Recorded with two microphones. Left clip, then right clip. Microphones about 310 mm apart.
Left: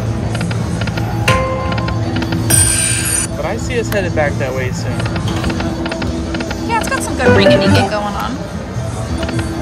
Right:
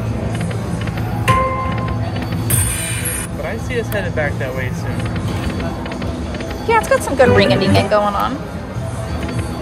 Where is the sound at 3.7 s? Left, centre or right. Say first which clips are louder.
Left 3 dB; centre.